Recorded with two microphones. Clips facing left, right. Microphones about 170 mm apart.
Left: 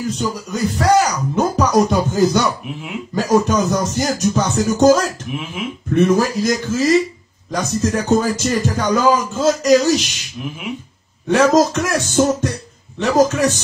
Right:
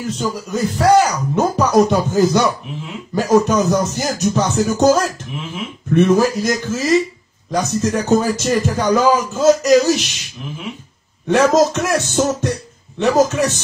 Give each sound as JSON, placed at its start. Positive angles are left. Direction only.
{"t": 0.1, "sound": "speech", "side_deg": 0}
{"t": 11.2, "sound": "speech", "side_deg": 0}